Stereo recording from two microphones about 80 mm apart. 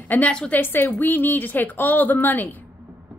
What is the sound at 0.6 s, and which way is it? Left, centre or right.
A woman's voice, left.